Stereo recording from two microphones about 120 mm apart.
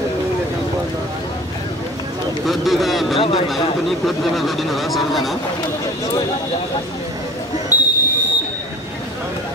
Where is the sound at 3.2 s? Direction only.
50° left (ahead or behind).